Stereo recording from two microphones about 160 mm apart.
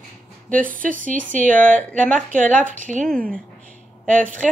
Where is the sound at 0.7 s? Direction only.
55° right (ahead or behind).